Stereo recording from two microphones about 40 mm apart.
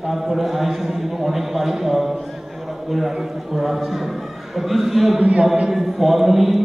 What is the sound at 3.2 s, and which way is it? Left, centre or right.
A man's voice, centre.